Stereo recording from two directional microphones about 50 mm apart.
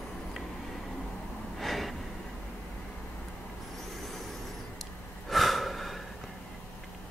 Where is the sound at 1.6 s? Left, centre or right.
Centre.